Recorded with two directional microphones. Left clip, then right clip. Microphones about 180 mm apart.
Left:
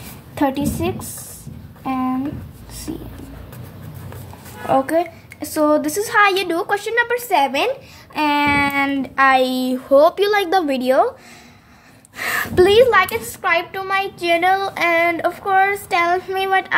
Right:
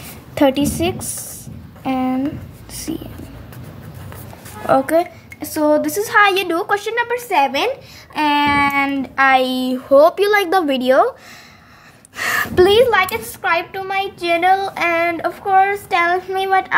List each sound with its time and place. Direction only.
0.3 s a woman's voice: 40° right (ahead or behind)
4.6 s a woman's voice: 10° right (ahead or behind)
12.2 s a woman's voice: 10° right (ahead or behind)